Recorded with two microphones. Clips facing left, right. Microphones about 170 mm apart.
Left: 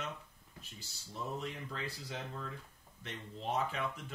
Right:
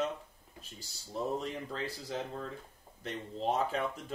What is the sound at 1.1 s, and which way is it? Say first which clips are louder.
Speech: right 6 dB; 35° right (ahead or behind).